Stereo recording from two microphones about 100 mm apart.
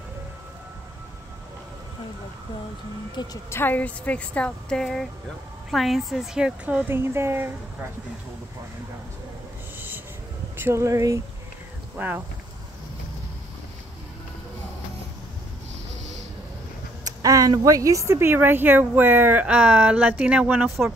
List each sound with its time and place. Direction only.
3.4 s a woman's voice: 20° left (ahead or behind); by 6.8 s 10° right (ahead or behind)
6.9 s speech: 25° right (ahead or behind)
9.8 s a sound: 20° right (ahead or behind)
10.6 s speech: 30° right (ahead or behind)
12.0 s speech: 20° right (ahead or behind)
17.0 s speech: 35° right (ahead or behind); by 20.7 s 15° right (ahead or behind)